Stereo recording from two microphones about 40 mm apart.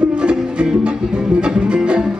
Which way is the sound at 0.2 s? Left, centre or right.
Right.